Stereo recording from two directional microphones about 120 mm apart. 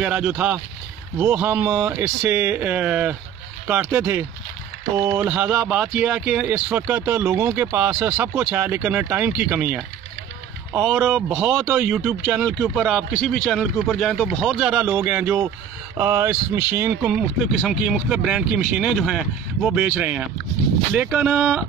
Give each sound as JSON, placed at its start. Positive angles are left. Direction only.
{"t": 0.0, "sound": "speech", "side_deg": -10}
{"t": 5.3, "sound": "speech", "side_deg": -10}
{"t": 11.0, "sound": "speech", "side_deg": -10}